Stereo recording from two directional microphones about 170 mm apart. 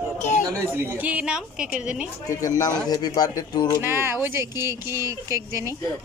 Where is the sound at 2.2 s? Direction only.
20° left (ahead or behind).